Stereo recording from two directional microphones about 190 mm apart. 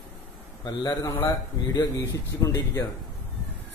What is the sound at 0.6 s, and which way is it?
A man's voice, 20° left (ahead or behind).